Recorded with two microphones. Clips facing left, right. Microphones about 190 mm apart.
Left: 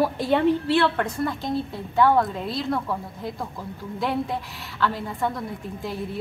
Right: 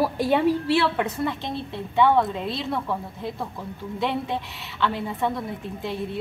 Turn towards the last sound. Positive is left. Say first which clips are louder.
# right 1 dB
turn(degrees=0)  # may be behind; listen again after turning